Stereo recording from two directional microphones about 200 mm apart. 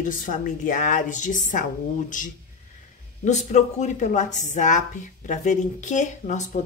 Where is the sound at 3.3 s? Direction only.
35° left (ahead or behind).